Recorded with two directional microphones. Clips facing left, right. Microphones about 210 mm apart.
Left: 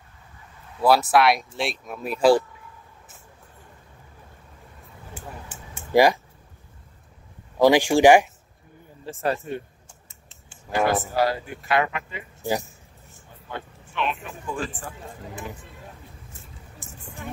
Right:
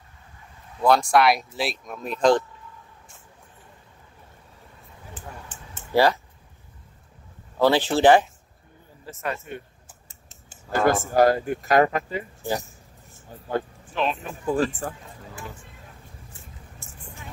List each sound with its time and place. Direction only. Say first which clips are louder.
0.7 s speech: even; 5° left (ahead or behind)
5.1 s a sound: left 2 dB; 10° left (ahead or behind)
7.5 s speech: left 3 dB; 15° left (ahead or behind)
9.0 s speech: left 5 dB; 30° left (ahead or behind)
10.9 s speech: right 7 dB; 45° right (ahead or behind)
13.3 s a man's voice: right 9 dB; 40° right (ahead or behind)
16.8 s vehicle: left 3 dB; 15° left (ahead or behind)